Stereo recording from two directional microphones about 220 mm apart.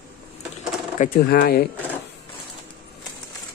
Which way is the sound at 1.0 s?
40° left (ahead or behind).